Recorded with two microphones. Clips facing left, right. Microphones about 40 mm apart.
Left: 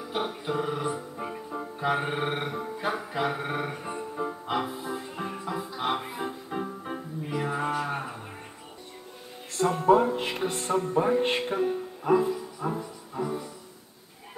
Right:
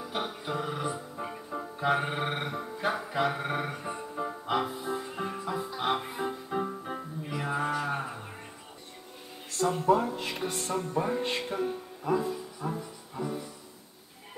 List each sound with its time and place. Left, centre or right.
0.0 s music: centre
7.3 s mantra: centre
7.8 s a sound: centre
9.6 s music: left